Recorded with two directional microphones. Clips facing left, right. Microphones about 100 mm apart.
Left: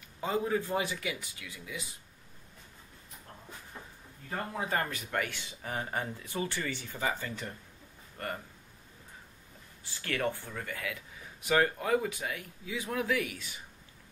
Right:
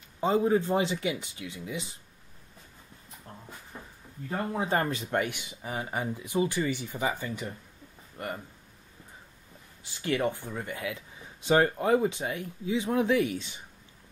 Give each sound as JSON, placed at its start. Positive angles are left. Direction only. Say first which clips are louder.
{"t": 0.2, "sound": "speech", "louder": "right 6 dB", "side_deg": -25}
{"t": 4.3, "sound": "speech", "louder": "right 5 dB", "side_deg": -20}
{"t": 9.9, "sound": "speech", "louder": "right 5 dB", "side_deg": -20}